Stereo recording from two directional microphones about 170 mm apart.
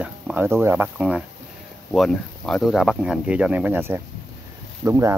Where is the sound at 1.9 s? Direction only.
5° left (ahead or behind).